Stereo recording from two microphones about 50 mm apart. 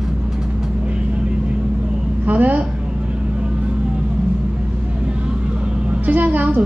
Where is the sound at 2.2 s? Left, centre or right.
Right.